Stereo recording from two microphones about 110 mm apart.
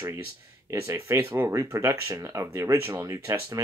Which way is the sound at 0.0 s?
25° right (ahead or behind).